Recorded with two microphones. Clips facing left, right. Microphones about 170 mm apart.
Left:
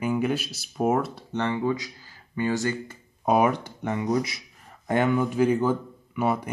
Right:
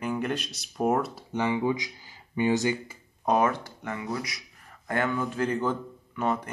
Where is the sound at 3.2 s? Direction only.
15° left (ahead or behind).